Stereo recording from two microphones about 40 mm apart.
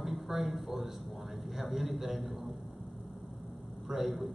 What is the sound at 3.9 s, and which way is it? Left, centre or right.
Speech, centre.